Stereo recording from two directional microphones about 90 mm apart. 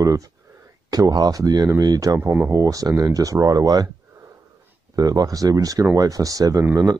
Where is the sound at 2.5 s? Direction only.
40° right (ahead or behind).